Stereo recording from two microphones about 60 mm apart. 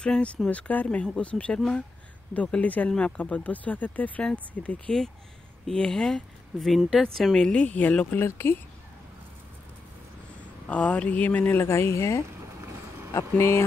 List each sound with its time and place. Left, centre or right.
0.0 s speech: centre
1.0 s speech: centre
7.6 s speech: left
8.2 s speech: left
10.7 s speech: left
11.6 s speech: left
12.4 s a sound: right
13.1 s speech: left